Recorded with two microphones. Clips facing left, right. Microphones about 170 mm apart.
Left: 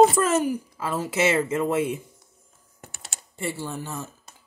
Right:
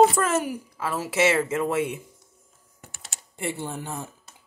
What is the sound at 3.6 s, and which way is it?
Speech, 15° right (ahead or behind).